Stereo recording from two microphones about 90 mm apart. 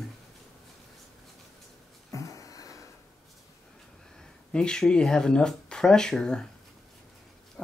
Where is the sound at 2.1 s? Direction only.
35° left (ahead or behind).